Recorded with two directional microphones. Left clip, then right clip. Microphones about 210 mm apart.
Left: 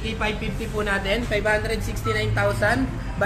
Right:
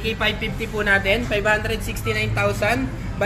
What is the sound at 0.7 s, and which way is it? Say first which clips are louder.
A man's voice: right 5 dB; 35° right (ahead or behind).